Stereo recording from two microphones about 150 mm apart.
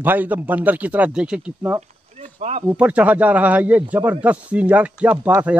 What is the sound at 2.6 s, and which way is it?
Speech, 10° right (ahead or behind).